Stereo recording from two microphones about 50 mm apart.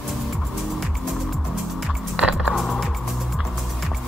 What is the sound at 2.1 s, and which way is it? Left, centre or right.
Music, right.